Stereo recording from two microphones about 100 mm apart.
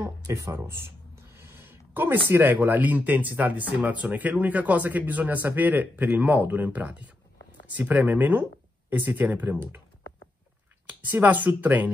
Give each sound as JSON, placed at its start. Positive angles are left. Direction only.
{"t": 0.0, "sound": "a sound", "side_deg": -30}
{"t": 2.3, "sound": "speech", "side_deg": -20}
{"t": 10.9, "sound": "speech", "side_deg": -15}